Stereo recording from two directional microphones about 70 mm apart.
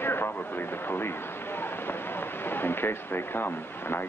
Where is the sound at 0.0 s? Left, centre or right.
Left.